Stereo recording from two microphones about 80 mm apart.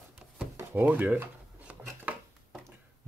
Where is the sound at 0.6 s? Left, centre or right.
Right.